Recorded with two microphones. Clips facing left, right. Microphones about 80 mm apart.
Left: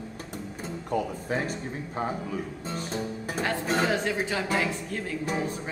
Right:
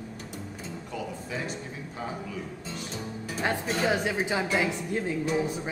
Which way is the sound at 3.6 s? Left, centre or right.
Left.